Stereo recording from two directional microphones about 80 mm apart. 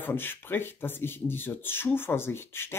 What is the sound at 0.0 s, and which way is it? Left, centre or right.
A man's voice, left.